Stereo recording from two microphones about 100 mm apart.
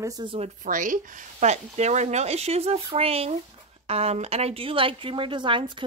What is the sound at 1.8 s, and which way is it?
Speech, 90° right.